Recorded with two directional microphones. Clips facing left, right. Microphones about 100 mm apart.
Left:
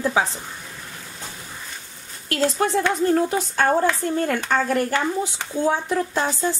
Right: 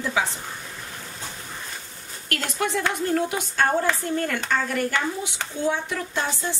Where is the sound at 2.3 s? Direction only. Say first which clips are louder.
Left 6 dB; 35° left (ahead or behind).